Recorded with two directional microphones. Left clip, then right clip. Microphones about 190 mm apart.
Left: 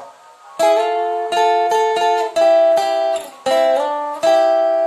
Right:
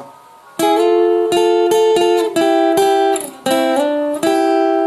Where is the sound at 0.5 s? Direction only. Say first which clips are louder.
Right 2 dB; 60° right (ahead or behind).